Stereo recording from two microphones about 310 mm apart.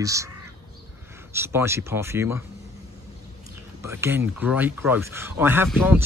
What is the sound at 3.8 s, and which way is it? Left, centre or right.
Speech, centre.